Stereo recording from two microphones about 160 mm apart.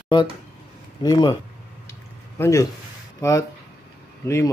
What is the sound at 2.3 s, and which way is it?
Speech, 15° left (ahead or behind).